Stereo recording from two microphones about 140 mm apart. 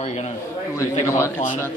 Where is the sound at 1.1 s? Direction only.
20° left (ahead or behind).